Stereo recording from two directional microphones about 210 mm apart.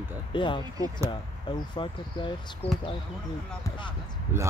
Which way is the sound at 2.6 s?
25° left (ahead or behind).